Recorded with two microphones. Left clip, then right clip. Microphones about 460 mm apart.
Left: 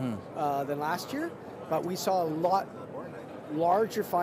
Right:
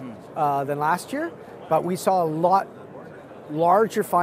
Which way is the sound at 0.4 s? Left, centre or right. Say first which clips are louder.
Right 8 dB; right.